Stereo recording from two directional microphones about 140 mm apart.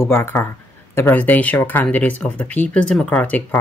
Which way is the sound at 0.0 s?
15° left (ahead or behind).